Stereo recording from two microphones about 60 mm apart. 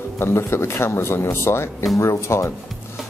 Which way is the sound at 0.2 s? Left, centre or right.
Left.